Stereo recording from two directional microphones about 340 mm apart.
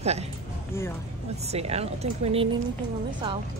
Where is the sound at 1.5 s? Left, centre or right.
Centre.